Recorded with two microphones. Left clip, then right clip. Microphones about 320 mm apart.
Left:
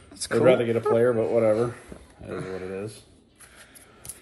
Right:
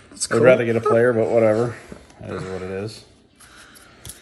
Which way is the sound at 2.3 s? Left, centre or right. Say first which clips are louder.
Right 4 dB; centre.